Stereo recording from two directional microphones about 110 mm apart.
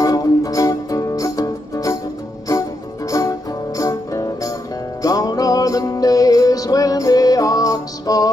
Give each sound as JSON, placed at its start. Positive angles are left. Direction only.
{"t": 0.0, "sound": "music", "side_deg": 35}
{"t": 3.1, "sound": "music", "side_deg": 30}